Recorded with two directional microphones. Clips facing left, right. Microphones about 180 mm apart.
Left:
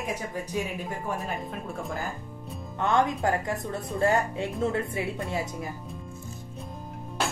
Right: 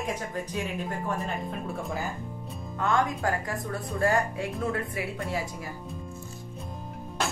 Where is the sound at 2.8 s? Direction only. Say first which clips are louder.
Left 2 dB; 20° left (ahead or behind).